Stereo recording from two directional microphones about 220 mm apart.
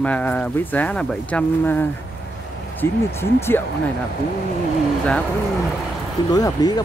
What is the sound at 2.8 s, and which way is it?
Speech, 10° left (ahead or behind).